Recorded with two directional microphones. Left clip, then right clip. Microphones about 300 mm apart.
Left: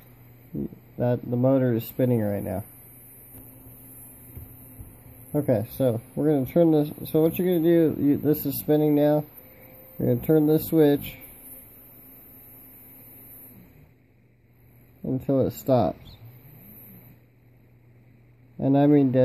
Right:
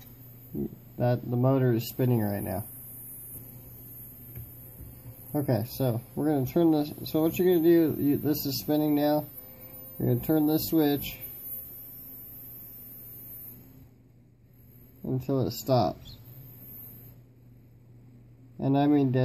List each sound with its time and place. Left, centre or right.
0.9 s speech: centre
5.3 s speech: left
15.0 s speech: left
18.6 s speech: left